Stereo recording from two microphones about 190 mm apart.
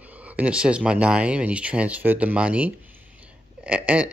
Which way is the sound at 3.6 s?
5° right (ahead or behind).